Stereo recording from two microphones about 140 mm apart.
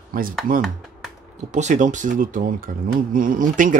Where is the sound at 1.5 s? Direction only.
60° right (ahead or behind).